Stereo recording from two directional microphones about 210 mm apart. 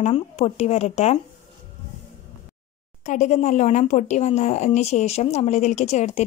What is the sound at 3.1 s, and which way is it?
A woman's voice, 35° left (ahead or behind).